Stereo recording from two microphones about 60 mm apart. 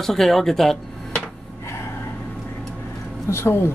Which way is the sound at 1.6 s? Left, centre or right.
Left.